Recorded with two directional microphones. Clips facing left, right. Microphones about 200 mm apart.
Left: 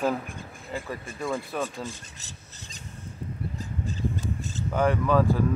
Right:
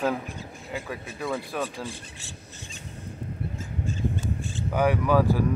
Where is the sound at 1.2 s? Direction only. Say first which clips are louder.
Even; 5° right (ahead or behind).